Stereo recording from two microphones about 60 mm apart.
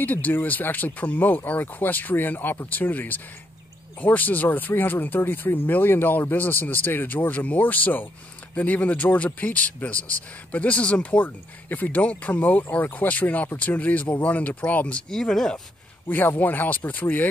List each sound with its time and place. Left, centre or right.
0.0 s speech: left
15.0 s speech: centre
16.1 s speech: left